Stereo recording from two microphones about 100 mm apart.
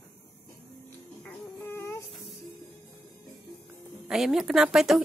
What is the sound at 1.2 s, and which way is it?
Baby cry, 20° left (ahead or behind).